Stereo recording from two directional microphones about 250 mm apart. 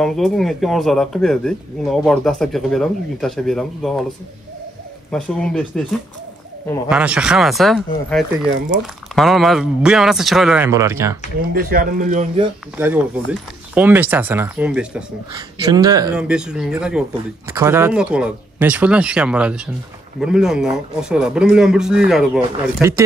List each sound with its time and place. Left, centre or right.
0.0 s speech: centre
5.1 s speech: centre
11.5 s speech: right
12.7 s speech: centre
15.3 s speech: centre
16.2 s speech: centre